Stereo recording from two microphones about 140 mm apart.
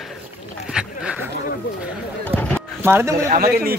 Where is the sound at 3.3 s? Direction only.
90° right.